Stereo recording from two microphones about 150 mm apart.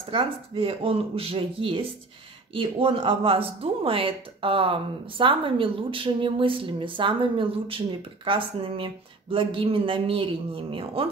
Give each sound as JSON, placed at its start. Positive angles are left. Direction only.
{"t": 0.1, "sound": "speech", "side_deg": -35}